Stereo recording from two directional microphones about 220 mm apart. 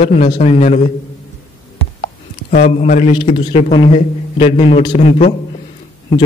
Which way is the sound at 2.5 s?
35° left (ahead or behind).